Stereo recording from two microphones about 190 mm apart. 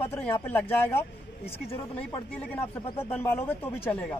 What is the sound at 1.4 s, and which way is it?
Speech, 30° left (ahead or behind).